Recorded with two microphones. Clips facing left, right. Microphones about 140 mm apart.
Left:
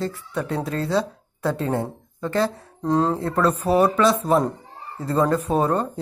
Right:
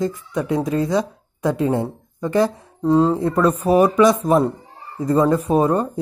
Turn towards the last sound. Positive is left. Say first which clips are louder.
# right 4 dB
turn(degrees=-10)  # may be behind; listen again after turning